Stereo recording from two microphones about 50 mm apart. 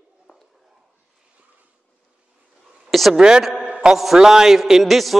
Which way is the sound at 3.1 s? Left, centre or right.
Centre.